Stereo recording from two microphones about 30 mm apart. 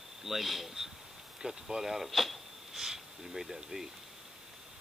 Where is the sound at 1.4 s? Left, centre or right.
Centre.